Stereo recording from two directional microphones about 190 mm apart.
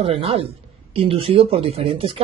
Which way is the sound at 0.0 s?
30° right (ahead or behind).